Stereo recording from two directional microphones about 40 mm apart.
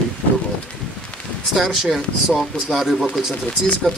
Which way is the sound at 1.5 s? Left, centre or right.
Centre.